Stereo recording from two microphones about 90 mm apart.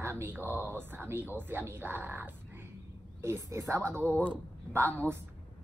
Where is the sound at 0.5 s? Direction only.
25° right (ahead or behind).